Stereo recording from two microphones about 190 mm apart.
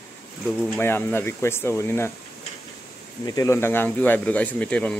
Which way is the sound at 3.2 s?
15° left (ahead or behind).